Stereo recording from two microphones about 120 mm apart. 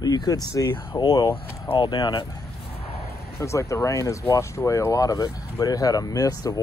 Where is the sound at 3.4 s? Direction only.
25° left (ahead or behind).